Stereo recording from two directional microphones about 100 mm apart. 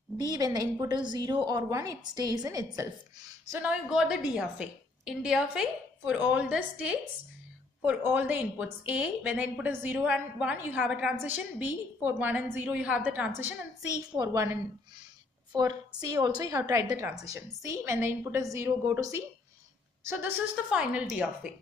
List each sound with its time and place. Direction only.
0.2 s a woman's voice: 40° right (ahead or behind)
3.5 s a woman's voice: 10° right (ahead or behind)
13.9 s a woman's voice: 40° right (ahead or behind)
16.0 s a woman's voice: 40° right (ahead or behind); by 20.2 s 25° right (ahead or behind)
20.7 s a woman's voice: 10° right (ahead or behind)